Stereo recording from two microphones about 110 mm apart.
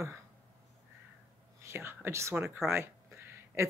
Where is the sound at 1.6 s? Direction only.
25° right (ahead or behind).